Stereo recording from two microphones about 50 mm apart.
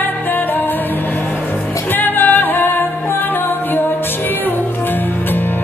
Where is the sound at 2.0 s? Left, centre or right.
Left.